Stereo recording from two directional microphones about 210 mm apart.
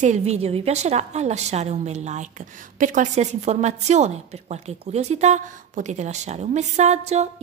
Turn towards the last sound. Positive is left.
turn(degrees=-30)  # may be behind; listen again after turning